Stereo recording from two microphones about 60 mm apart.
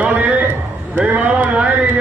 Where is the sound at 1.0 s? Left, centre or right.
Centre.